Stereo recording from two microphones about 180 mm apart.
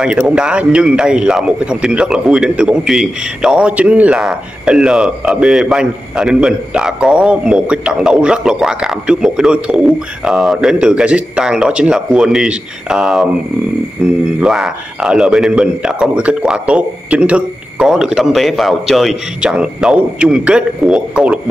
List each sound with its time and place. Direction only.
0.0 s a man's voice: 5° right (ahead or behind)